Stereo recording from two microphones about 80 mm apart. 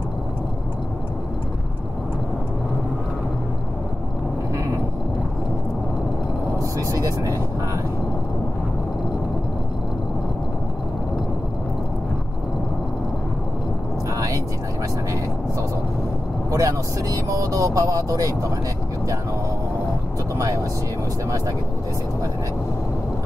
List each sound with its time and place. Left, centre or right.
6.6 s vehicle: right
14.1 s vehicle: right
16.4 s vehicle: right
20.3 s vehicle: right